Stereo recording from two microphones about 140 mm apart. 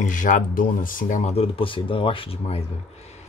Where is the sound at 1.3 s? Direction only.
45° left (ahead or behind).